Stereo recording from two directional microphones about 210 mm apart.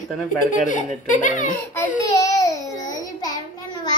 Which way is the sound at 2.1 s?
15° left (ahead or behind).